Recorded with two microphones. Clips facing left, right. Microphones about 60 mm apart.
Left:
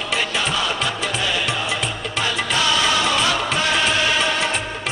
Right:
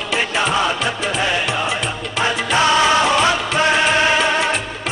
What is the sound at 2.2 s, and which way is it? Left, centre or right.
Music, right.